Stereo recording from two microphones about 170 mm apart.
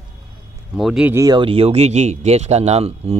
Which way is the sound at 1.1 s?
25° right (ahead or behind).